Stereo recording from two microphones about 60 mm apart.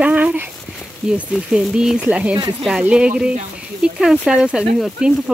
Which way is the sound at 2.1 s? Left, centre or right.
Right.